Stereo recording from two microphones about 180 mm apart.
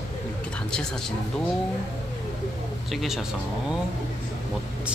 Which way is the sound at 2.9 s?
Centre (ahead or behind).